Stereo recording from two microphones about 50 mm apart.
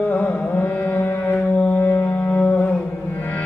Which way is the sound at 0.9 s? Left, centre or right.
Left.